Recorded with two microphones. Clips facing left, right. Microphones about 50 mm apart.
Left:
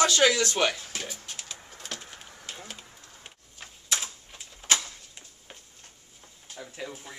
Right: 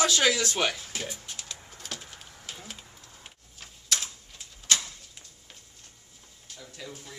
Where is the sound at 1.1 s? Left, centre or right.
Centre; by 4.8 s left.